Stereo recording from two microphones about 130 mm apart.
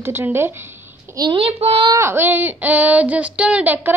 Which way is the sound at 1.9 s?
20° right (ahead or behind).